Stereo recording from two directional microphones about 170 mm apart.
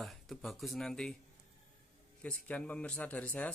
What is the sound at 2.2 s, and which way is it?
Speech, 5° left (ahead or behind).